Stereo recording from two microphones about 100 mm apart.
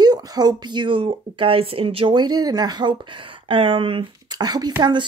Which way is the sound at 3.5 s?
65° right (ahead or behind).